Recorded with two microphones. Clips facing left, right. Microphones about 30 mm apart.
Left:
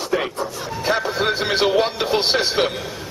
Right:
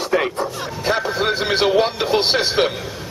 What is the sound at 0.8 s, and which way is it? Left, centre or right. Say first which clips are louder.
Speech: right 1 dB; centre.